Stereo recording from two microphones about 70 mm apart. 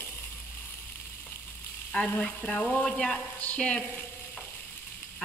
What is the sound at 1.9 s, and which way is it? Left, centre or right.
Stir, centre.